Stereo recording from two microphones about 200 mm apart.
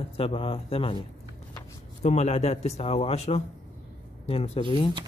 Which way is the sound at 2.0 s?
35° left (ahead or behind).